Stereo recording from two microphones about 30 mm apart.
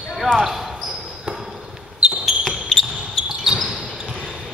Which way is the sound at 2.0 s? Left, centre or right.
Right.